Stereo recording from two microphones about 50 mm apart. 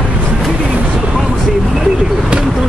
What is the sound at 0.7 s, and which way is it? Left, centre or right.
Vehicle, right.